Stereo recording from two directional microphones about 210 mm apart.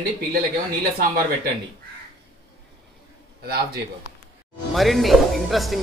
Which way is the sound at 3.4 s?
50° right (ahead or behind).